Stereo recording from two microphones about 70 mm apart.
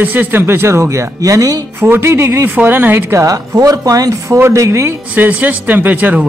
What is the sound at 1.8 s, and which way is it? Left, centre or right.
A man's voice, right.